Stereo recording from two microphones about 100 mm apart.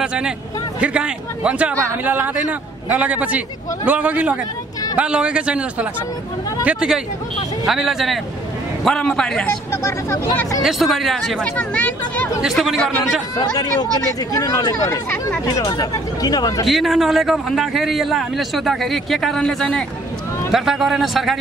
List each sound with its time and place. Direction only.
0.0 s a man's voice: 10° right (ahead or behind); by 9.5 s 5° left (ahead or behind)
9.7 s speech: 30° left (ahead or behind)
10.6 s a man's voice: centre (ahead or behind)
11.4 s speech: 15° left (ahead or behind)
12.4 s a man's voice: 5° right (ahead or behind)
13.4 s speech: 45° left (ahead or behind)
16.6 s a man's voice: 5° right (ahead or behind)